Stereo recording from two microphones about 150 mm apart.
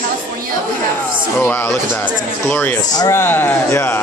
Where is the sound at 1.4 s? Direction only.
15° left (ahead or behind).